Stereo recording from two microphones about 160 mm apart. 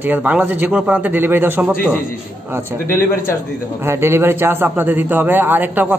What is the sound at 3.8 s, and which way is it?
A man's voice, 15° right (ahead or behind).